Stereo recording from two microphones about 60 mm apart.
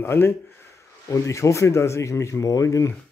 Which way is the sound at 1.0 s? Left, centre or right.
Left.